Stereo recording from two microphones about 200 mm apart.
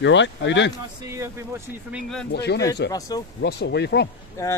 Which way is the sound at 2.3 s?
55° left (ahead or behind).